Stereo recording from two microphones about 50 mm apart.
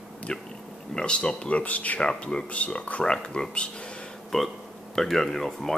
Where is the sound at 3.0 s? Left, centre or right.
Centre.